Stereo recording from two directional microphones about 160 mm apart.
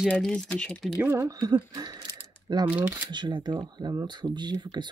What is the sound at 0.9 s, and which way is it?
Speech, 15° right (ahead or behind).